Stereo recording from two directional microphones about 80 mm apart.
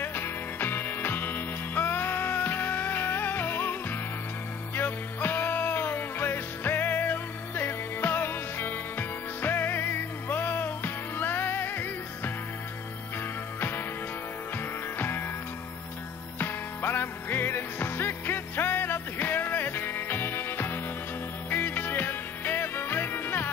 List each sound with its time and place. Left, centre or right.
0.0 s music: left
13.6 s music: left
15.0 s music: left
16.3 s music: left